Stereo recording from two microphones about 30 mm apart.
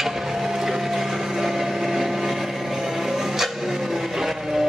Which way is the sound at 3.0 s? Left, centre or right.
Centre.